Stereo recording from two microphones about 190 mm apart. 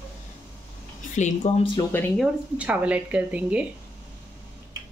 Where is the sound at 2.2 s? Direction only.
5° right (ahead or behind).